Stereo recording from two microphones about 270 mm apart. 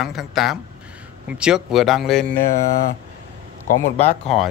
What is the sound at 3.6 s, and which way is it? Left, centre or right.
Speech, left.